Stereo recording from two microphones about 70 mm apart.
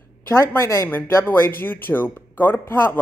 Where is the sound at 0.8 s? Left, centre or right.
Left.